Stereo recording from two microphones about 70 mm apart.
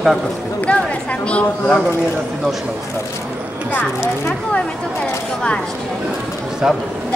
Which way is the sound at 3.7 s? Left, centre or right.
Left.